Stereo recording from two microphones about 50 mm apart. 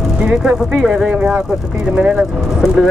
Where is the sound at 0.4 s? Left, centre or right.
Centre.